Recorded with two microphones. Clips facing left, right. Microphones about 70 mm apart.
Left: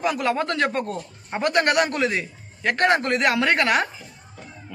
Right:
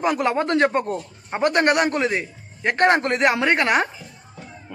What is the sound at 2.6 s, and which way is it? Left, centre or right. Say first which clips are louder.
Speech: right 2 dB; right.